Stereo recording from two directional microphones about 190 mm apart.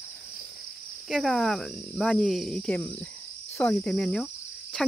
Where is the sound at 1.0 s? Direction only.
Centre (ahead or behind).